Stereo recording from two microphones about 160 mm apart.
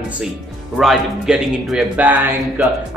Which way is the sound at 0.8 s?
Centre (ahead or behind).